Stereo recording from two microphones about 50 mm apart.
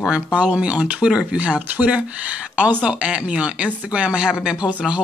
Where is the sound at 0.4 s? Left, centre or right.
Right.